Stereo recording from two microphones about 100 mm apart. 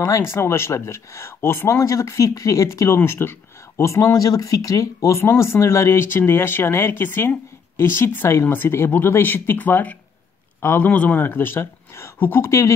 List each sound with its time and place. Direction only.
0.3 s speech: 25° left (ahead or behind)